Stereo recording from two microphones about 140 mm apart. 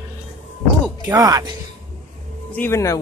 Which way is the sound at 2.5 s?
20° left (ahead or behind).